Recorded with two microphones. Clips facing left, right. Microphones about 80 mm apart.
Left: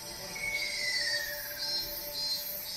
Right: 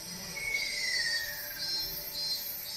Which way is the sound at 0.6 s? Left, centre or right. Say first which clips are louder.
Right 2 dB; left.